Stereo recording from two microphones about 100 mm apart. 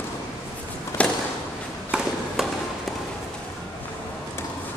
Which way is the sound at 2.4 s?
5° right (ahead or behind).